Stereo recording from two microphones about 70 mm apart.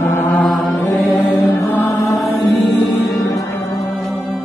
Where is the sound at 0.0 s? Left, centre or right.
Left.